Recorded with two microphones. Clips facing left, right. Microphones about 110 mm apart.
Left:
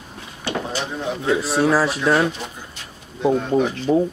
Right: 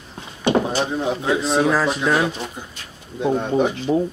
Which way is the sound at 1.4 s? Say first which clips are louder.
Even; 5° left (ahead or behind).